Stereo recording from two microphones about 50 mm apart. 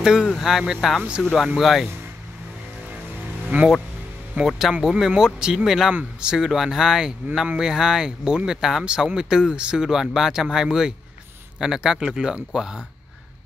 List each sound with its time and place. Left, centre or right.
0.0 s speech: centre
3.5 s speech: right
4.5 s speech: centre